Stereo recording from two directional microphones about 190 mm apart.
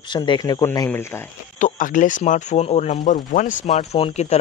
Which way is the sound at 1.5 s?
40° left (ahead or behind).